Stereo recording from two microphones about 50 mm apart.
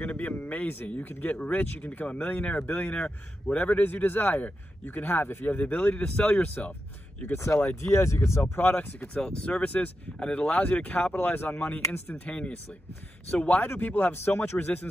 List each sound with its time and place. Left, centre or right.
0.0 s speech: left
3.8 s speech: left
5.1 s speech: left
5.4 s speech: left
7.3 s speech: left
8.5 s speech: left
9.0 s speech: centre
9.7 s speech: left
11.1 s speech: left
12.3 s speech: left